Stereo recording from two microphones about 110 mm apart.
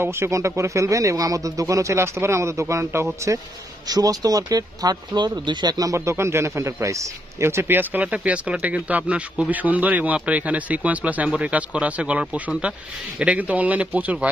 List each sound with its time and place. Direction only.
0.0 s speech: 25° right (ahead or behind)
3.8 s speech: 35° right (ahead or behind); by 14.3 s 15° right (ahead or behind)